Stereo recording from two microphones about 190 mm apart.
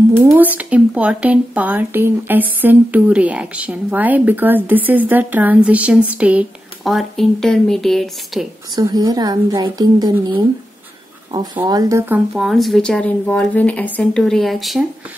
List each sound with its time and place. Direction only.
0.1 s speech: 15° right (ahead or behind)
8.7 s a woman's voice: 20° right (ahead or behind)
12.4 s speech: centre (ahead or behind)